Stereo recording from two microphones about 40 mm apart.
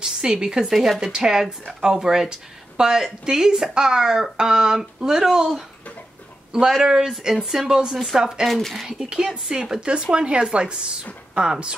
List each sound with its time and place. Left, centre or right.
0.0 s a woman's voice: centre
0.7 s speech: centre
6.8 s speech: centre
8.5 s speech: centre
8.8 s speech: centre